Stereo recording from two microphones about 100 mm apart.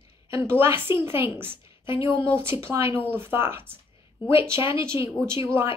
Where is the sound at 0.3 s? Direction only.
25° right (ahead or behind).